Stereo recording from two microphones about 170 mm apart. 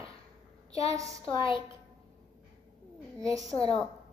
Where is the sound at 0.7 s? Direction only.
20° right (ahead or behind).